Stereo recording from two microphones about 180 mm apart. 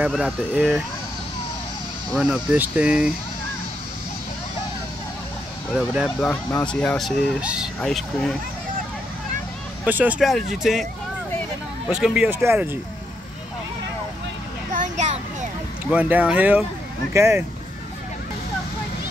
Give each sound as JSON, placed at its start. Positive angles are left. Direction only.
{"t": 0.1, "sound": "speech", "side_deg": 0}
{"t": 2.1, "sound": "speech", "side_deg": -5}
{"t": 6.0, "sound": "speech", "side_deg": 10}
{"t": 9.8, "sound": "speech", "side_deg": -10}
{"t": 11.9, "sound": "speech", "side_deg": -5}
{"t": 14.7, "sound": "a sound", "side_deg": -45}
{"t": 15.9, "sound": "speech", "side_deg": -10}